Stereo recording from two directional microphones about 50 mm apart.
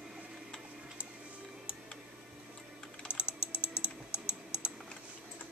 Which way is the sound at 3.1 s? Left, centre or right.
Left.